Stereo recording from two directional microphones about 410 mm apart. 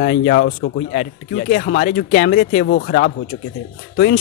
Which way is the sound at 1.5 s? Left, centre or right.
Left.